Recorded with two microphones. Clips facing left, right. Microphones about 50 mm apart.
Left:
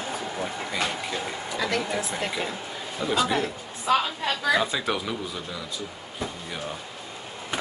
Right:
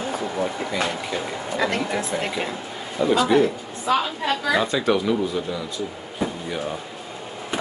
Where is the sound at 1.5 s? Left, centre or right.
Right.